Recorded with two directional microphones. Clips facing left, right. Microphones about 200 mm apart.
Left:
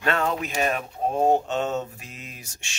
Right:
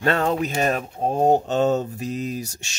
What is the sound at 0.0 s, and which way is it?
Speech, 35° right (ahead or behind).